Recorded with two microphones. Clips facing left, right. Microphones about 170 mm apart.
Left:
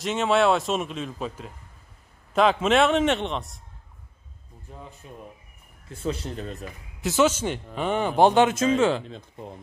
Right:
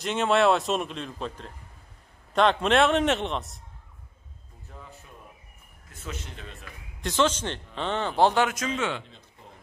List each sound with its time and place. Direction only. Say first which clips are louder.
0.0 s a man's voice: left 1 dB; centre (ahead or behind)
4.7 s speech: left 4 dB; 20° left (ahead or behind)
5.9 s speech: left 10 dB; 30° left (ahead or behind)
7.0 s speech: left 3 dB; 10° left (ahead or behind); by 9.0 s 35° left (ahead or behind)